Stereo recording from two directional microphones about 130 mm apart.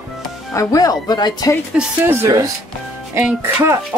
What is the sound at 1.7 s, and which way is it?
Speech, 10° right (ahead or behind).